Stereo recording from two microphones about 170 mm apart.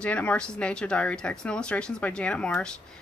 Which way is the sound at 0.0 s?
10° left (ahead or behind).